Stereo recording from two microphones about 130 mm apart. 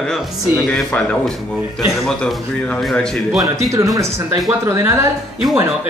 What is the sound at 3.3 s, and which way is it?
Speech, 25° right (ahead or behind).